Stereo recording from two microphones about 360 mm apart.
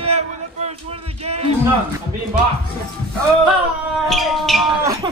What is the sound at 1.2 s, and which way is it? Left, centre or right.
Speech, centre.